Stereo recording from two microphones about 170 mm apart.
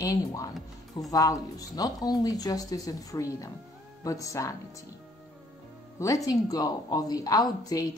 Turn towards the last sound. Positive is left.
turn(degrees=20)  # may be behind; listen again after turning